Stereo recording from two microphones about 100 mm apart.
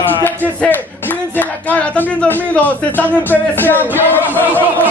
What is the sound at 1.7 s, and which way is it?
Speech, 15° left (ahead or behind).